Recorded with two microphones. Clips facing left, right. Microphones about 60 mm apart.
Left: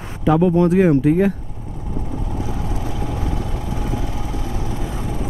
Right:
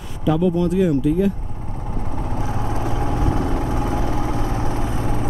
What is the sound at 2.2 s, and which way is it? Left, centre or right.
Vehicle, right.